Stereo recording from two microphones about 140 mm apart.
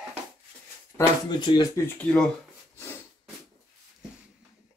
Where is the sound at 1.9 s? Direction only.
5° left (ahead or behind).